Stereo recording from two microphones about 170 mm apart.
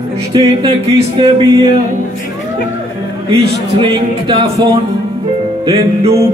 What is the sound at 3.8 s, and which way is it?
Speech, 30° right (ahead or behind).